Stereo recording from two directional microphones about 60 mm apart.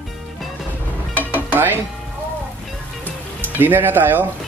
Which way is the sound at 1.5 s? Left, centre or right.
Right.